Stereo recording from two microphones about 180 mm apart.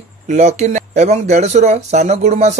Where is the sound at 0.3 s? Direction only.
40° right (ahead or behind).